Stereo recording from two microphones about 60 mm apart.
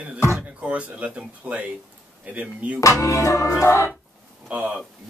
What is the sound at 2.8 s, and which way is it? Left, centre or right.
Music, left.